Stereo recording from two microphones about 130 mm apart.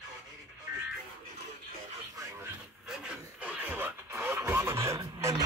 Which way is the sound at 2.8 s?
10° right (ahead or behind).